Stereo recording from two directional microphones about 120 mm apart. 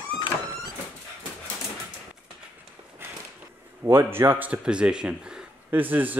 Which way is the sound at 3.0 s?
20° right (ahead or behind).